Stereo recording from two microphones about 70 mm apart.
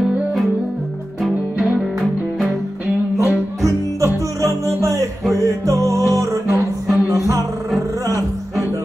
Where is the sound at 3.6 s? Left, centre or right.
Right.